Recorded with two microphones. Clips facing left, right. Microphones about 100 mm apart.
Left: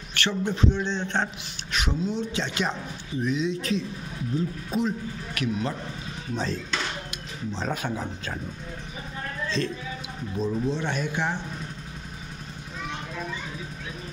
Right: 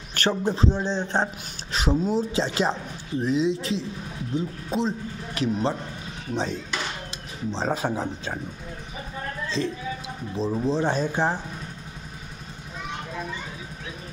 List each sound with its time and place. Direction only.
0.1 s a man's voice: 40° right (ahead or behind)
6.3 s speech: 20° right (ahead or behind)
10.3 s a man's voice: 30° right (ahead or behind)